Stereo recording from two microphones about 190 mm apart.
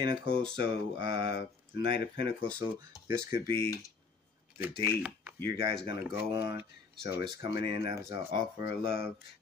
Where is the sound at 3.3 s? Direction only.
60° left (ahead or behind).